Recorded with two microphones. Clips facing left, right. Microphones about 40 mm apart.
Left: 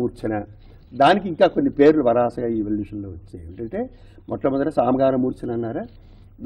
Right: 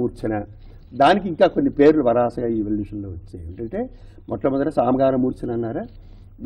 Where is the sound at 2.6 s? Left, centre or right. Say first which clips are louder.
Right 1 dB; centre.